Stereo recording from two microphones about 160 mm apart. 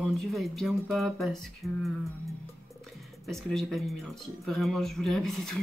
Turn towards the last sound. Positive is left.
turn(degrees=0)  # may be behind; listen again after turning